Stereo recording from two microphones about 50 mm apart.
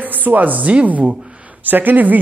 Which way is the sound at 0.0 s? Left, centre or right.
Right.